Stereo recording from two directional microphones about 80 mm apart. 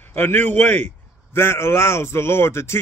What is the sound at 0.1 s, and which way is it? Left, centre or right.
A man's voice, left.